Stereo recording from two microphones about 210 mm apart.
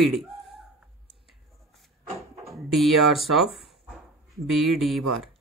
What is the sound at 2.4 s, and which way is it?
Speech, centre (ahead or behind).